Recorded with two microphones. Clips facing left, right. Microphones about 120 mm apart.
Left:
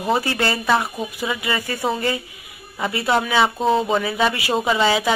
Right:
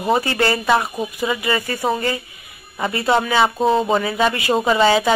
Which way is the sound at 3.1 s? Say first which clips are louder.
Right 1 dB; 5° left (ahead or behind).